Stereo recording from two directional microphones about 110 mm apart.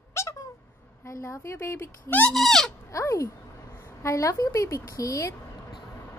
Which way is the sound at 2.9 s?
30° left (ahead or behind).